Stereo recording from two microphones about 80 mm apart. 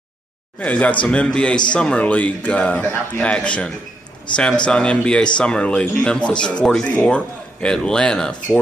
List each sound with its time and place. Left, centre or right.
0.6 s a man's voice: centre